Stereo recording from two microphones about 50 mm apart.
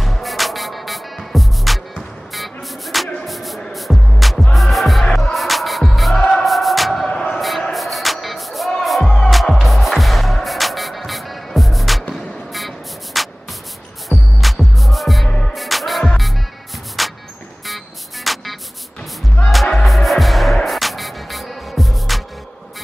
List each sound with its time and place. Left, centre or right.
0.0 s music: centre
7.1 s a sound: centre
7.7 s music: centre
9.0 s music: centre
9.3 s music: centre
17.0 s a sound: centre
17.6 s music: centre
19.8 s music: centre